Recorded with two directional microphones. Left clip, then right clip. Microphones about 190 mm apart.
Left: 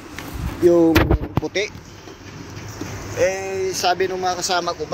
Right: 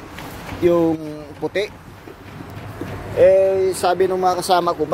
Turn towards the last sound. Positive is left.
turn(degrees=-60)  # may be behind; listen again after turning